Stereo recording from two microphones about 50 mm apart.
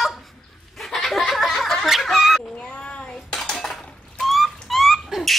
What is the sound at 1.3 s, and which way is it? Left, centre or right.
Snicker, centre.